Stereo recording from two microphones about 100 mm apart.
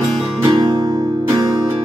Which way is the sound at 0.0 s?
35° right (ahead or behind).